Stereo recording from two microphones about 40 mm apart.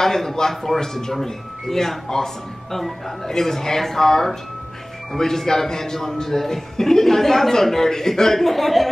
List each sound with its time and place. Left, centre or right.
0.0 s a man's voice: centre